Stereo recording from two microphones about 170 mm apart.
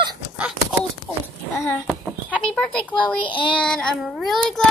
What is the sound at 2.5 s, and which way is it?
Speech, 5° left (ahead or behind).